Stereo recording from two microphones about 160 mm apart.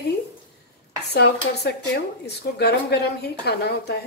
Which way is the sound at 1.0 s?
90° left.